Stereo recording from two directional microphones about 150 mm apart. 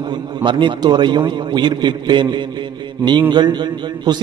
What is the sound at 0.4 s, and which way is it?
A man's voice, 30° right (ahead or behind).